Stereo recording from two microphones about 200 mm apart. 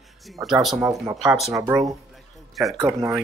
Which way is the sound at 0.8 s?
15° right (ahead or behind).